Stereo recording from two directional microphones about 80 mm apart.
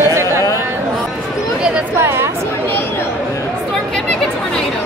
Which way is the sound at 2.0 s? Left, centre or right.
Right.